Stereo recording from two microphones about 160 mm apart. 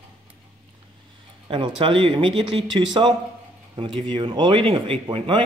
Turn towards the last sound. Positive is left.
turn(degrees=-30)  # may be behind; listen again after turning